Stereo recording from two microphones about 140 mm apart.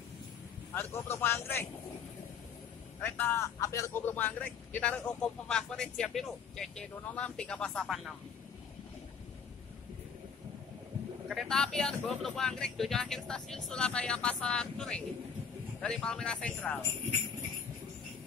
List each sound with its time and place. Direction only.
0.9 s speech: 15° left (ahead or behind)
3.0 s speech: 15° left (ahead or behind)
11.2 s speech: centre (ahead or behind)